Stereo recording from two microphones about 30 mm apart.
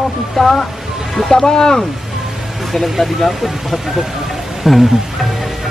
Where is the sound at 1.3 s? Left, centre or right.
Left.